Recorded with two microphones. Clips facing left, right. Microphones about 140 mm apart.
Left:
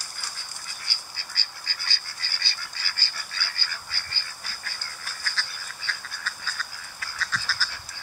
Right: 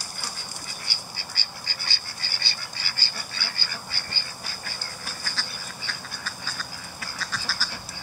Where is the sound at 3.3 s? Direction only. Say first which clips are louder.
Left 2 dB; 15° right (ahead or behind).